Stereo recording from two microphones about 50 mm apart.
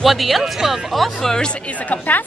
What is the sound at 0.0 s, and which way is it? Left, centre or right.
Speech, centre.